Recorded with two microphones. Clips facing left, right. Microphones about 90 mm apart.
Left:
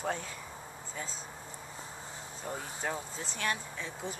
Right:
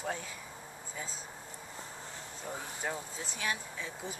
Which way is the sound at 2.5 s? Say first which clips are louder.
Left 2 dB; 5° right (ahead or behind).